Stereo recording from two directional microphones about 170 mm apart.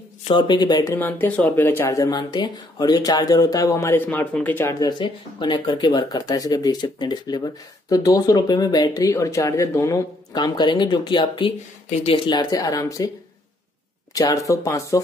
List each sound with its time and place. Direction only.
0.2 s speech: 30° left (ahead or behind)
0.9 s speech: 10° left (ahead or behind)
14.1 s speech: 20° left (ahead or behind)